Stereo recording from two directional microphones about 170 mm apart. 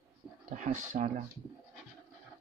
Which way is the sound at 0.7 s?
50° right (ahead or behind).